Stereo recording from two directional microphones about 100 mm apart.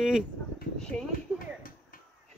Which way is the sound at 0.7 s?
10° left (ahead or behind).